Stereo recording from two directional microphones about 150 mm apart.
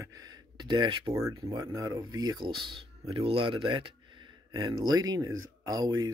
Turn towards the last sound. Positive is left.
turn(degrees=-25)  # may be behind; listen again after turning